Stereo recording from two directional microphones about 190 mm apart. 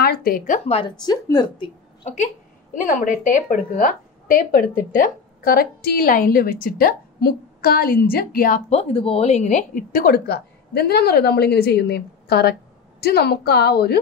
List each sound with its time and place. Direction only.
0.0 s a woman's voice: 50° left (ahead or behind)
0.7 s speech: 25° left (ahead or behind)
2.7 s a woman's voice: 40° left (ahead or behind)